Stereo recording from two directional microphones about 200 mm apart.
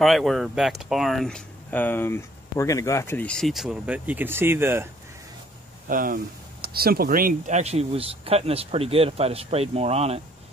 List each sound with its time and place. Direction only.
0.0 s speech: centre (ahead or behind)
5.9 s speech: 45° right (ahead or behind)